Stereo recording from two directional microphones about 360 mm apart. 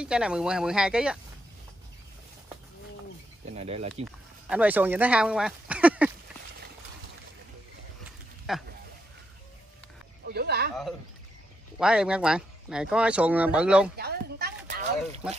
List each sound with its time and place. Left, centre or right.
0.0 s speech: centre
3.5 s speech: centre
3.9 s speech: centre
8.5 s speech: centre
10.2 s a sound: right
11.8 s speech: centre
13.9 s a sound: right